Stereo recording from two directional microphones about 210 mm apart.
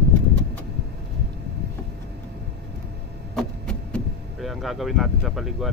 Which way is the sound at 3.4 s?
5° left (ahead or behind).